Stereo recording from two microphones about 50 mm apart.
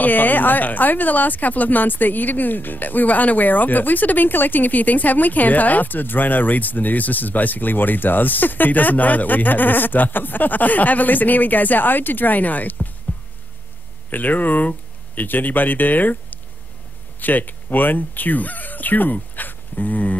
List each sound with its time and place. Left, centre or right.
0.0 s speech: left
14.1 s speech: left